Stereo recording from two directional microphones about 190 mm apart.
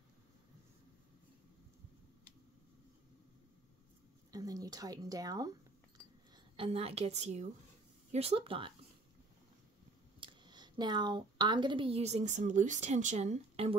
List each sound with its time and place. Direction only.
4.3 s a woman's voice: 20° right (ahead or behind)
10.2 s a woman's voice: 25° right (ahead or behind)